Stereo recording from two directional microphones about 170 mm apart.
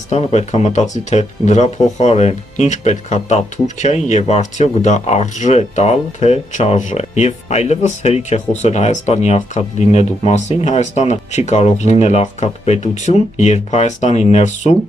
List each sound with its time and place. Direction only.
0.1 s speech: 40° left (ahead or behind)